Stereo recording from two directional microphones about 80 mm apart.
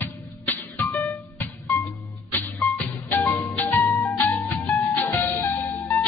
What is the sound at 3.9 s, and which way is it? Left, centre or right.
Music, left.